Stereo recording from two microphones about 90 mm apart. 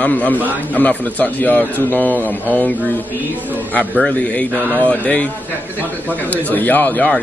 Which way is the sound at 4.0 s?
15° left (ahead or behind).